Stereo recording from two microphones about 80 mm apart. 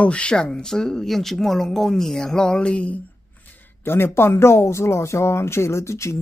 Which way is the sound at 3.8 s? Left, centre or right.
Left.